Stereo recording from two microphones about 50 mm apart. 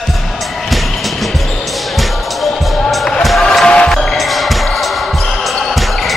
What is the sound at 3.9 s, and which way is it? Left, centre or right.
Music, centre.